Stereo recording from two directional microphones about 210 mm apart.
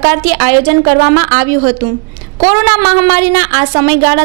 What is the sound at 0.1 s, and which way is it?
A woman's voice, 15° right (ahead or behind).